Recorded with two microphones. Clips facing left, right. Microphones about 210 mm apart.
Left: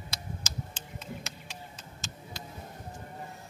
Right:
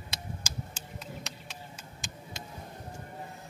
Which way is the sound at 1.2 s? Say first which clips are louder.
Even; centre (ahead or behind).